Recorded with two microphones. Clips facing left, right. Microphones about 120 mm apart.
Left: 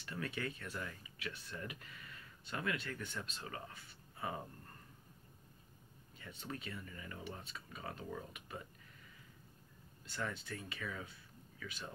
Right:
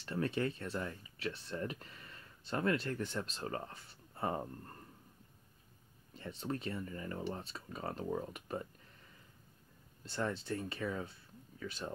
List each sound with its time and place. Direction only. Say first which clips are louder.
0.0 s speech: right 7 dB; 30° right (ahead or behind)
6.1 s speech: right 7 dB; 35° right (ahead or behind)
10.0 s speech: right 6 dB; 30° right (ahead or behind)